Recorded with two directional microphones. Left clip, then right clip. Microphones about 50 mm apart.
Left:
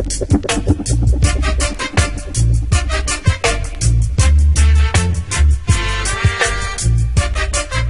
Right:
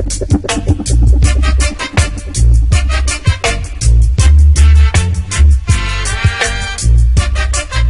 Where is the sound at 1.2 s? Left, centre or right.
Right.